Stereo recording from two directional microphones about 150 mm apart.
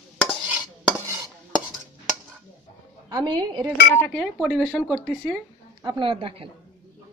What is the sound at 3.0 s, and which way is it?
Speech, 30° right (ahead or behind).